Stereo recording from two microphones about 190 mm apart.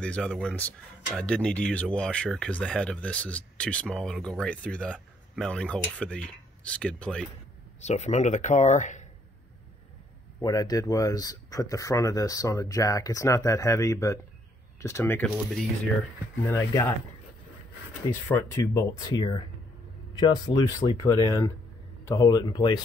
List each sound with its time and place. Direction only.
0.0 s speech: 5° left (ahead or behind)
7.8 s speech: 35° left (ahead or behind)
10.4 s speech: 20° left (ahead or behind)
18.1 s speech: 10° left (ahead or behind)